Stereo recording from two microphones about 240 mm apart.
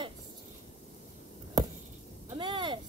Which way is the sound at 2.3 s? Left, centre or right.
Right.